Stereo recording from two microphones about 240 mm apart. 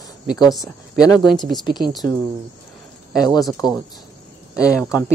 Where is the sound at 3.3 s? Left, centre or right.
Centre.